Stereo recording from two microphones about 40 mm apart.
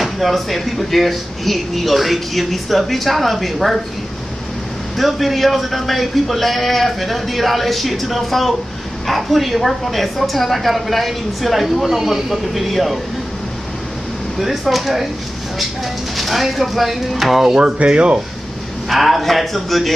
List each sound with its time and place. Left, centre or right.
0.0 s a woman's voice: centre
4.9 s a woman's voice: centre
14.6 s a woman's voice: centre
16.2 s a woman's voice: centre
17.6 s speech: right
18.9 s a woman's voice: centre